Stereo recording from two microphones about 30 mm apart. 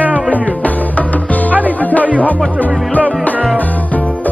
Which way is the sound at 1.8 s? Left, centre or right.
Left.